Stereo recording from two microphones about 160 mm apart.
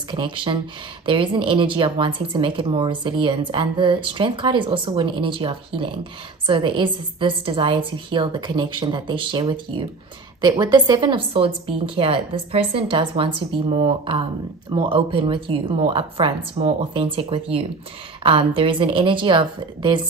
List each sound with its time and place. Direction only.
0.1 s speech: 30° right (ahead or behind)